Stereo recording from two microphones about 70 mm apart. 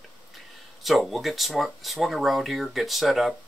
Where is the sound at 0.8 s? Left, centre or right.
Centre.